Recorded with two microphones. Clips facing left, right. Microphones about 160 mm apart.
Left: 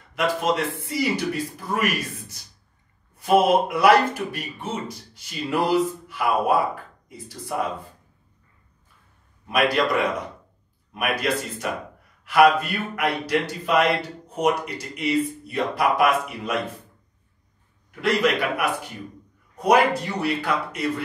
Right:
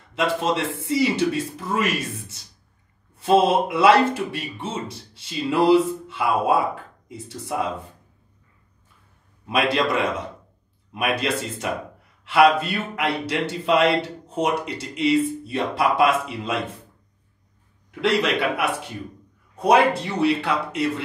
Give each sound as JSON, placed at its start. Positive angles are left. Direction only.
{"t": 0.1, "sound": "a man's voice", "side_deg": -25}
{"t": 9.5, "sound": "a man's voice", "side_deg": -25}
{"t": 18.0, "sound": "a man's voice", "side_deg": -25}